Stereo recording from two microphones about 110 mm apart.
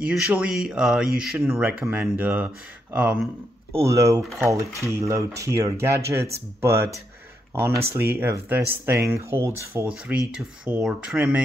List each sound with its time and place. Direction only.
0.0 s speech: 10° right (ahead or behind)
1.6 s speech: 15° right (ahead or behind)
3.7 s speech: 25° right (ahead or behind)
7.5 s speech: 20° right (ahead or behind)
9.8 s speech: 10° right (ahead or behind)